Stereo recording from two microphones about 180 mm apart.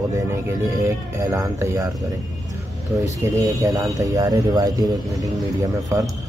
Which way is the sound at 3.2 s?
20° right (ahead or behind).